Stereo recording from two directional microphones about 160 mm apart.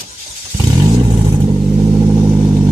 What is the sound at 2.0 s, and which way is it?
Vehicle, 10° right (ahead or behind).